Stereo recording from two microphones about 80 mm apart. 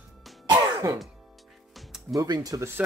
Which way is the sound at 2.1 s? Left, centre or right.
Right.